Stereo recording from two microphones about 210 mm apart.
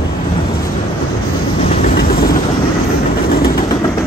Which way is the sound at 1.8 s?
45° left (ahead or behind).